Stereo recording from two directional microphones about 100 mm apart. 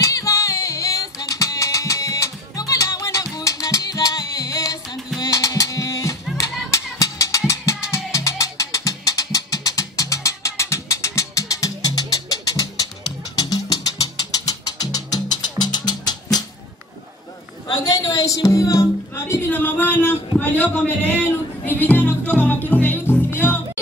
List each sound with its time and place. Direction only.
0.0 s music: 35° left (ahead or behind)
17.6 s music: 40° left (ahead or behind); by 23.8 s 20° left (ahead or behind)